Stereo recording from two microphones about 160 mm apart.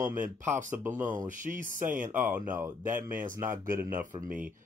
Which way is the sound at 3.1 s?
60° right (ahead or behind).